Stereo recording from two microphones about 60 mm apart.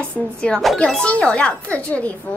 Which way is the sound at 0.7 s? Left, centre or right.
Centre.